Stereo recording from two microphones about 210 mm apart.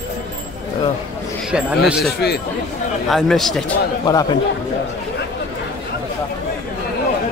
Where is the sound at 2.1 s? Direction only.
50° left (ahead or behind).